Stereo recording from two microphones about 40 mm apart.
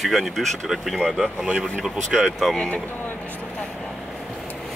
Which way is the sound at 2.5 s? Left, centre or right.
Centre.